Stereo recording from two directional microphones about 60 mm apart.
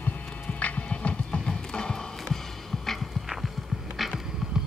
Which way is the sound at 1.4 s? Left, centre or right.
Centre.